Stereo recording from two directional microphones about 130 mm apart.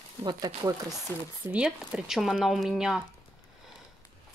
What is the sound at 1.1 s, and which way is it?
Speech, 20° left (ahead or behind).